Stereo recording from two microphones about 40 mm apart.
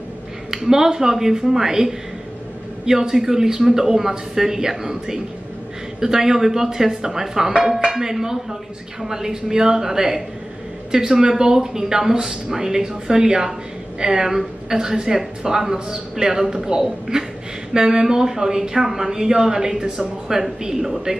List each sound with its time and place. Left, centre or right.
0.5 s speech: centre